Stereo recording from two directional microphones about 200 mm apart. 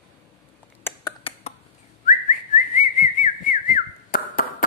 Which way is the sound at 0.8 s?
10° left (ahead or behind).